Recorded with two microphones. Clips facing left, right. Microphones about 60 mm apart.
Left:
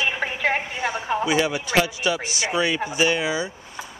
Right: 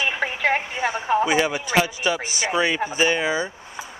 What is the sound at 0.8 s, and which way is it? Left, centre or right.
Speech, centre.